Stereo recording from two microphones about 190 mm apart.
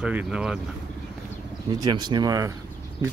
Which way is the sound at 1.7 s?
20° right (ahead or behind).